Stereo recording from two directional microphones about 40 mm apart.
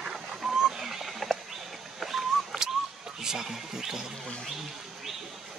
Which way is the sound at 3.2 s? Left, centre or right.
Centre.